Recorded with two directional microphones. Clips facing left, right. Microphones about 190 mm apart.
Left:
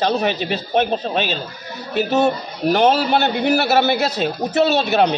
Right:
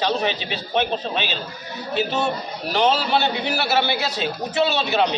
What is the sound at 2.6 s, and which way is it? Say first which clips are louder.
A man's voice: left 5 dB; 50° left (ahead or behind).